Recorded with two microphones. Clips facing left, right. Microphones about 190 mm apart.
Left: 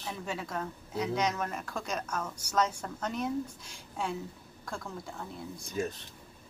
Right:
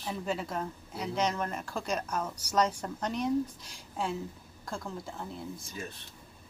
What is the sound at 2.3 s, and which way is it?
Speech, 55° left (ahead or behind).